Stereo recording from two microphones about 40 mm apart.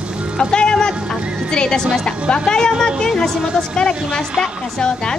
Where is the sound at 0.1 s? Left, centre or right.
Right.